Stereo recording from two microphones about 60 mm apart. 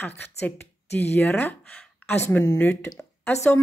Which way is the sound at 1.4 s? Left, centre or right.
Left.